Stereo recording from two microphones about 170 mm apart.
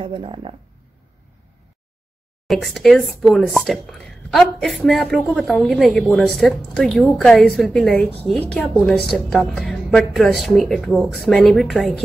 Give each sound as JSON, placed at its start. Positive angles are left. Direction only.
{"t": 0.0, "sound": "speech", "side_deg": -30}
{"t": 2.4, "sound": "a woman's voice", "side_deg": 0}